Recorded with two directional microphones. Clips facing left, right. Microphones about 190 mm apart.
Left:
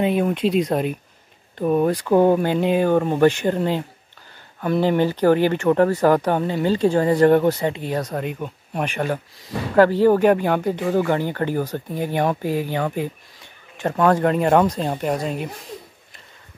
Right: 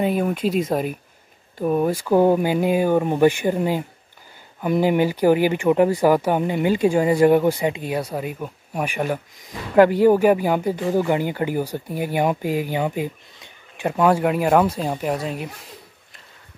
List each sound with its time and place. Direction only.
0.0 s speech: 5° right (ahead or behind)